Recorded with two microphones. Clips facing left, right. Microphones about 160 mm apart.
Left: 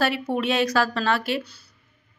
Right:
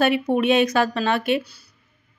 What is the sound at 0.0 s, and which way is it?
A woman's voice, 20° right (ahead or behind).